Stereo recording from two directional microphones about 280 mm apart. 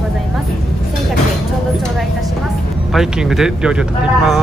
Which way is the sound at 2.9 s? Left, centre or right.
Centre.